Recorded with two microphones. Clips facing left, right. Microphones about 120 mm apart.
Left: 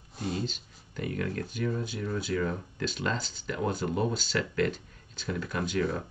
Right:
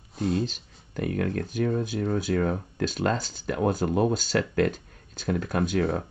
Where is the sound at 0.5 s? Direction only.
50° right (ahead or behind).